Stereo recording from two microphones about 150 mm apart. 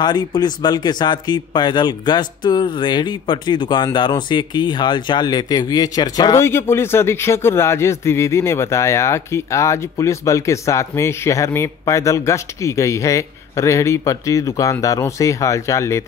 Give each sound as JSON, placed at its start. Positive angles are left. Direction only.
{"t": 0.0, "sound": "a man's voice", "side_deg": 30}